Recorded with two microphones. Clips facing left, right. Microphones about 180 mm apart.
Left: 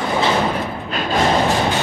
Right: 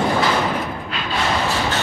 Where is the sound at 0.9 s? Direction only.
45° left (ahead or behind).